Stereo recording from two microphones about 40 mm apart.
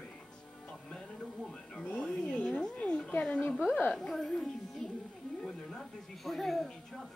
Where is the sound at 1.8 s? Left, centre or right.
Left.